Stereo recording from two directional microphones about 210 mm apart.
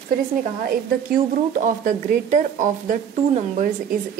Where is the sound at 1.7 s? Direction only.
35° right (ahead or behind).